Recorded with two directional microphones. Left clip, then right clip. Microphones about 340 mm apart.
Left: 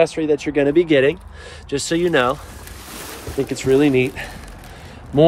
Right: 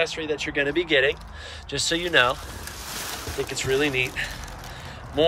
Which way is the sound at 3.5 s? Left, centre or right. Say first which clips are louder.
Left 8 dB; centre.